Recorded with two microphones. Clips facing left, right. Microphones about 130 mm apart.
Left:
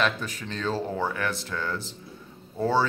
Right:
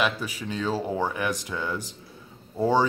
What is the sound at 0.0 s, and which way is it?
Speech, 10° right (ahead or behind).